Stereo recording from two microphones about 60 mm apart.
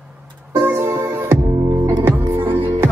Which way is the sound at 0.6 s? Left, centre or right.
Right.